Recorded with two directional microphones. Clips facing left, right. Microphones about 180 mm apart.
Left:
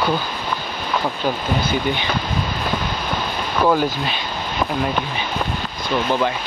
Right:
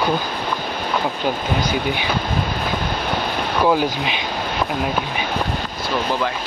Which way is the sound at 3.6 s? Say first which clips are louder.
Left 1 dB; 10° right (ahead or behind).